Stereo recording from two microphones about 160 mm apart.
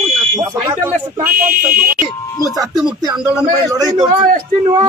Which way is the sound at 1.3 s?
65° right (ahead or behind).